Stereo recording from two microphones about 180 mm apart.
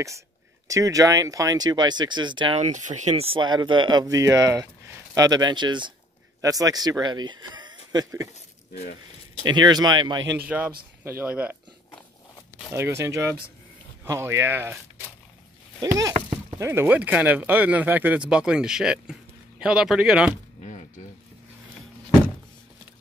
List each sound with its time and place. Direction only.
0.7 s speech: 20° right (ahead or behind)
2.6 s speech: 40° right (ahead or behind)
3.3 s speech: 25° right (ahead or behind)
9.5 s speech: 25° right (ahead or behind)
10.3 s speech: 10° right (ahead or behind)
12.7 s speech: 15° right (ahead or behind)